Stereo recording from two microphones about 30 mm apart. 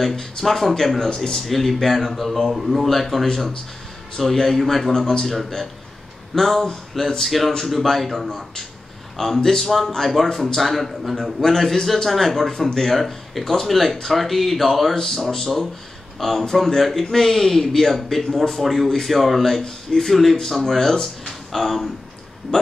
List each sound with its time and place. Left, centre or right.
0.2 s a man's voice: centre
0.9 s speech: left
1.4 s speech: centre
4.4 s a man's voice: centre
4.9 s speech: left
5.2 s a man's voice: centre
13.4 s a man's voice: centre
19.6 s speech: left
20.1 s a man's voice: centre